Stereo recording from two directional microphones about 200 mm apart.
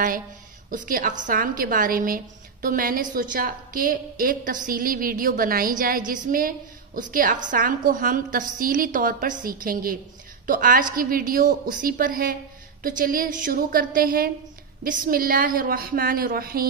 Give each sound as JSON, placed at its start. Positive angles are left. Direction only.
{"t": 0.7, "sound": "a woman's voice", "side_deg": -45}